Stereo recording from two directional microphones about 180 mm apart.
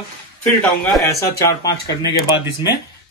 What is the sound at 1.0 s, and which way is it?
A man's voice, 15° left (ahead or behind).